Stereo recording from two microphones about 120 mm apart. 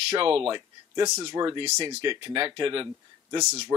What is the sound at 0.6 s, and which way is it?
Speech, 35° right (ahead or behind).